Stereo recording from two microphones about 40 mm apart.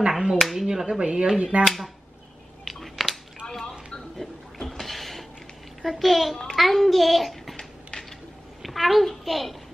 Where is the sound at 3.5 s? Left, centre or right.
Centre.